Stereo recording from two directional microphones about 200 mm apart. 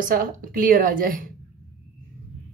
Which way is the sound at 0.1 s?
45° right (ahead or behind).